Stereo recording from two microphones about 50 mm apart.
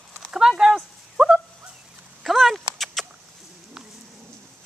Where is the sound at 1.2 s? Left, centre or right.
Centre.